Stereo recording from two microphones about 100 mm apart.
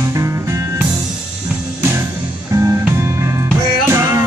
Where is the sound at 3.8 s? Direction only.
30° right (ahead or behind).